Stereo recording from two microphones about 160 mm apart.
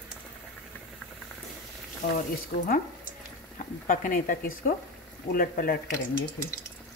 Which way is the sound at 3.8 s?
55° left (ahead or behind).